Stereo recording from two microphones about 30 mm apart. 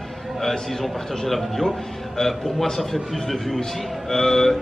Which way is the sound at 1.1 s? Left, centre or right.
Centre.